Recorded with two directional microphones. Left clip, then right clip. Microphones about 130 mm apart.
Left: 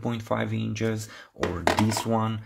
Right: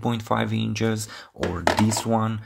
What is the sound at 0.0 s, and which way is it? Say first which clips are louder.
Speech: right 4 dB; 35° right (ahead or behind).